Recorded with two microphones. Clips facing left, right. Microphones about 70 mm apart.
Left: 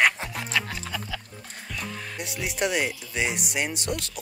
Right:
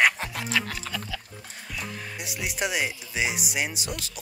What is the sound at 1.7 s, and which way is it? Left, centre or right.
Speech, centre.